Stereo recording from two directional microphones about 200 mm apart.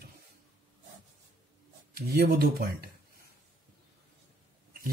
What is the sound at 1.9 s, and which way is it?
Speech, 50° right (ahead or behind).